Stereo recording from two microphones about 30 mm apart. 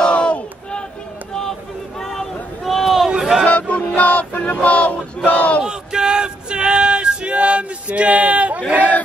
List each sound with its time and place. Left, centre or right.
0.0 s crowd: left
2.0 s a sound: centre
2.6 s run: centre
3.2 s music: centre
3.4 s music: left
4.6 s a sound: left
5.6 s male singing: right
7.3 s a man's voice: right